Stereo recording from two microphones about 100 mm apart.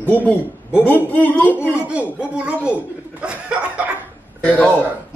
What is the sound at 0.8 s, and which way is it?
Speech, 15° left (ahead or behind).